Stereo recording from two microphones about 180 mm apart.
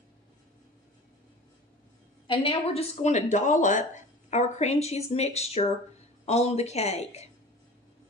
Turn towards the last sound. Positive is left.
turn(degrees=35)  # may be behind; listen again after turning